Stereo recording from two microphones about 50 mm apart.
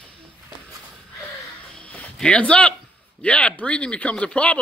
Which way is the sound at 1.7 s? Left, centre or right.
Left.